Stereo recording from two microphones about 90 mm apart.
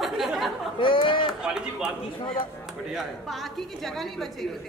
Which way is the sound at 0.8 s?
70° left (ahead or behind).